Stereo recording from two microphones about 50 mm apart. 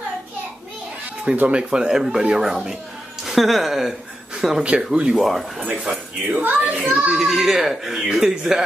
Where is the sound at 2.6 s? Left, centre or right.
Centre.